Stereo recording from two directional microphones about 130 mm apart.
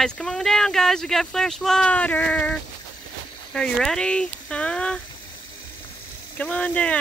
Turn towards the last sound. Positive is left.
turn(degrees=10)  # may be behind; listen again after turning